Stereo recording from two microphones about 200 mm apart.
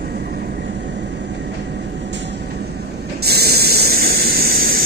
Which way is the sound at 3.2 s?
50° right (ahead or behind).